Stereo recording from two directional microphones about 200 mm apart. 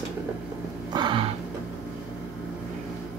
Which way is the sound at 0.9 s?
25° right (ahead or behind).